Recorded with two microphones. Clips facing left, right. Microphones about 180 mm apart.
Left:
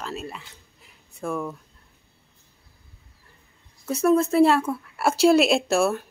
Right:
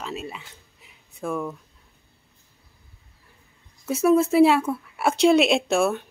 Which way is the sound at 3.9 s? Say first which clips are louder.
Right 1 dB; 5° right (ahead or behind).